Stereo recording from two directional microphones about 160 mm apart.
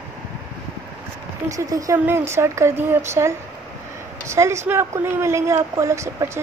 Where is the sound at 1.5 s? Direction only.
20° right (ahead or behind).